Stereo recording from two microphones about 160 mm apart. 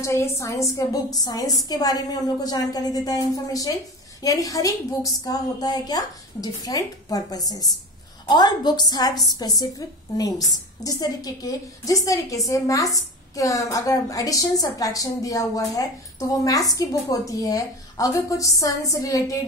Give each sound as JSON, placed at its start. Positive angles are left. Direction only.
{"t": 0.0, "sound": "a woman's voice", "side_deg": 20}